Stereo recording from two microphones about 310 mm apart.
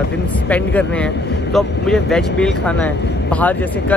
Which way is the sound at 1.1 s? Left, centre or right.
Left.